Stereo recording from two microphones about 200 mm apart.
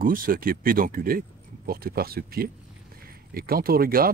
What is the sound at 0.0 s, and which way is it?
Speech, 45° right (ahead or behind).